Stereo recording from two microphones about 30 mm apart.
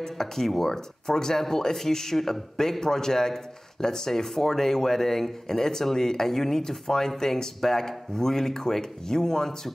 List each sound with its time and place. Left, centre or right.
0.0 s speech: centre